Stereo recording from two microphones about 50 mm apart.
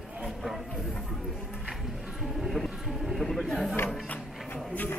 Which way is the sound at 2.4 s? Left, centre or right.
Centre.